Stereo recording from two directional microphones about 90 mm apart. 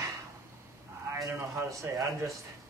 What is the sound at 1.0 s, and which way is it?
Speech, 30° right (ahead or behind).